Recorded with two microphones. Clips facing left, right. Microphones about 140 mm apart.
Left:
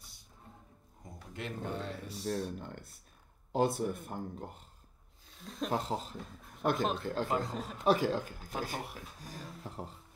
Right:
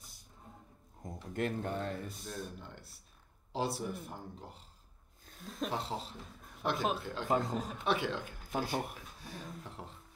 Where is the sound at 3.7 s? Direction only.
Centre (ahead or behind).